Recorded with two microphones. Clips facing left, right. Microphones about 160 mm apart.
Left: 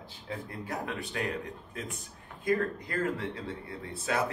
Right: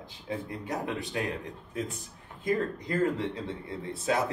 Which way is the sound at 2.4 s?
20° right (ahead or behind).